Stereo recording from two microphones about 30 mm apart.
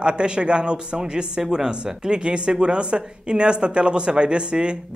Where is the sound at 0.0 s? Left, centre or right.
Right.